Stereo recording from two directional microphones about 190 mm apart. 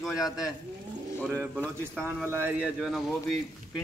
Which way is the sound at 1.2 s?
5° left (ahead or behind).